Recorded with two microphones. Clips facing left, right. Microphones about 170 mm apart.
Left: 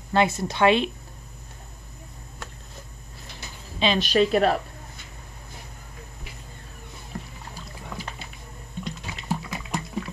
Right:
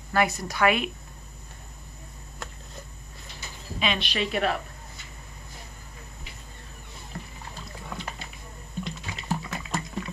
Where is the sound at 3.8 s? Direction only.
40° left (ahead or behind).